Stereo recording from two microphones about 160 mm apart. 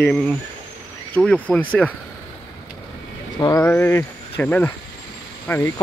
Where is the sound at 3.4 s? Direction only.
25° left (ahead or behind).